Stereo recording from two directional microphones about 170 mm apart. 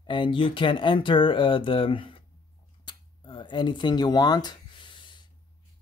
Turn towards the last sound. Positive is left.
turn(degrees=25)  # may be behind; listen again after turning